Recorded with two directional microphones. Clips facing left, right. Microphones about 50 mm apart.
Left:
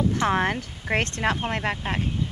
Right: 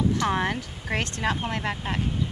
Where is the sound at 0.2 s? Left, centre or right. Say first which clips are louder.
Left 2 dB; left.